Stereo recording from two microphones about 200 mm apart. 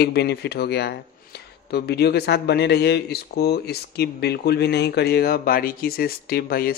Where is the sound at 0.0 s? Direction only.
55° left (ahead or behind).